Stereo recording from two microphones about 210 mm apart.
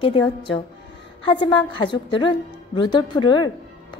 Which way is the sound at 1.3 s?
20° left (ahead or behind).